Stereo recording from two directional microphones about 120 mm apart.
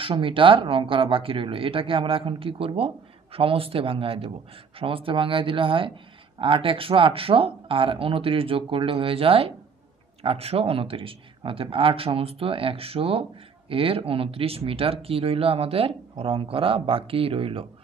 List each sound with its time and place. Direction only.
0.0 s speech: 45° right (ahead or behind)